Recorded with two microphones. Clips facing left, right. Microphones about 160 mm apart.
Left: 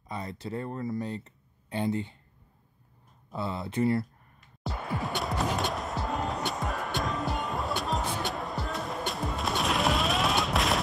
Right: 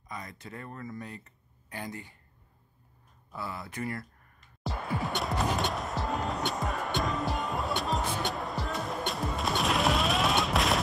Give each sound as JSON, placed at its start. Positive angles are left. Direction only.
{"t": 0.1, "sound": "speech", "side_deg": 30}
{"t": 3.3, "sound": "speech", "side_deg": 25}
{"t": 4.6, "sound": "music", "side_deg": 0}